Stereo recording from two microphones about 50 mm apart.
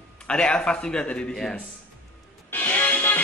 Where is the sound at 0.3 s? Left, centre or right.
Left.